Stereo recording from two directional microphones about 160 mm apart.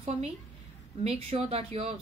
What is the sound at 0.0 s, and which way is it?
A woman's voice, 40° right (ahead or behind).